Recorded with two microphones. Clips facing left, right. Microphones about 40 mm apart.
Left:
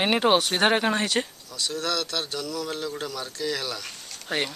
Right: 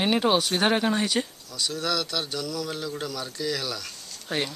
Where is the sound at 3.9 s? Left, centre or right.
Left.